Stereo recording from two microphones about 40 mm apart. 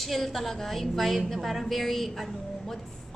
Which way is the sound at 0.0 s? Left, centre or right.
Centre.